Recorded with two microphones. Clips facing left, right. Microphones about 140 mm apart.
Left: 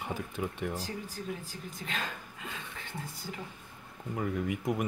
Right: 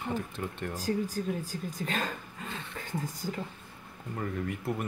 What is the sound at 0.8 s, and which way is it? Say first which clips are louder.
Speech: right 8 dB; 40° right (ahead or behind).